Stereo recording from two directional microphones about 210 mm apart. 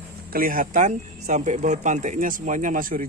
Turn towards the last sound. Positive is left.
turn(degrees=-40)  # may be behind; listen again after turning